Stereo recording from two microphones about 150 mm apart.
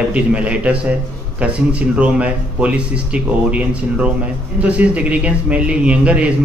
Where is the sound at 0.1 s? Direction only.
10° right (ahead or behind).